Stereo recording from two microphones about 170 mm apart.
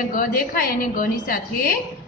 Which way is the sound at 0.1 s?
55° left (ahead or behind).